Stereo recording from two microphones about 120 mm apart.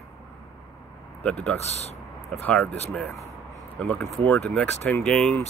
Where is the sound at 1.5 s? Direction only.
60° left (ahead or behind).